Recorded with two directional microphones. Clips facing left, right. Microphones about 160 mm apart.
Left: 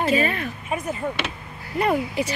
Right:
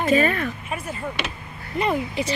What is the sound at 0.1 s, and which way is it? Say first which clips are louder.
Speech: right 3 dB; 45° right (ahead or behind).